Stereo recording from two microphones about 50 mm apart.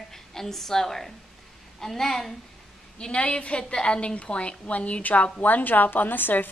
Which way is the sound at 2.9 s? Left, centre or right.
Centre.